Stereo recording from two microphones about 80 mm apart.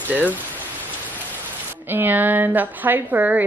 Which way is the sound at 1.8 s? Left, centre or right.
Right.